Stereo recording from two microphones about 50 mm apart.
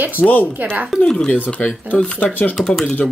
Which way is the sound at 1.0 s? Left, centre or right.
Centre.